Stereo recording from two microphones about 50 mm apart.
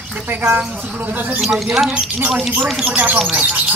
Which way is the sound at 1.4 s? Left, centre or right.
Centre.